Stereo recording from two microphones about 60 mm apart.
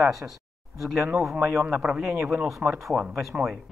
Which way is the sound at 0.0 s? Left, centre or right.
Centre.